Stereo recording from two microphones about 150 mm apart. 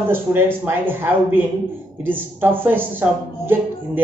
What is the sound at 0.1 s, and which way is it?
A woman's voice, 15° right (ahead or behind).